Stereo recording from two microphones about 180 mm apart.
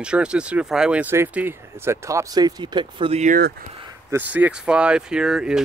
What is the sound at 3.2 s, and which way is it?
Speech, 50° right (ahead or behind).